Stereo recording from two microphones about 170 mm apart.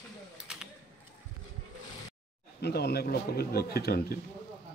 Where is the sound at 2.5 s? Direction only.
75° left (ahead or behind).